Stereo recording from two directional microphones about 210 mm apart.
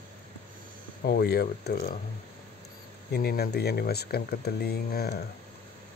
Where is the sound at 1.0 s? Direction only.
50° left (ahead or behind).